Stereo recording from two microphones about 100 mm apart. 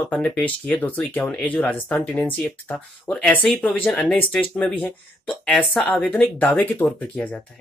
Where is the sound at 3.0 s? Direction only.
5° left (ahead or behind).